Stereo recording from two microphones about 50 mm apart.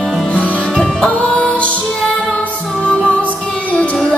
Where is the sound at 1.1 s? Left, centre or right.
Left.